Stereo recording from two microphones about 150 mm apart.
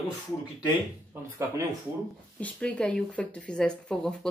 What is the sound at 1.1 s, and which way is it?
Speech, 15° right (ahead or behind).